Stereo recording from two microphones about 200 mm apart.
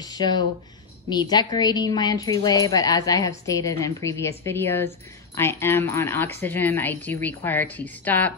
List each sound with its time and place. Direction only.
0.0 s a woman's voice: 20° left (ahead or behind)